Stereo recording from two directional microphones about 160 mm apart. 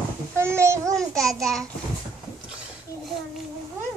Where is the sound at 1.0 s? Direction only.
5° left (ahead or behind).